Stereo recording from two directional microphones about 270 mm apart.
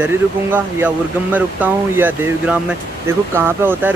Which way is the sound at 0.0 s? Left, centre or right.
Centre.